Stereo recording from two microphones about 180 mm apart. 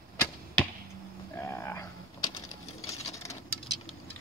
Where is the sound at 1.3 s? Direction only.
15° left (ahead or behind).